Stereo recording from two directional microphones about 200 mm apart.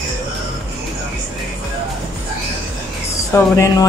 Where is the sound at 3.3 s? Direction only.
15° left (ahead or behind).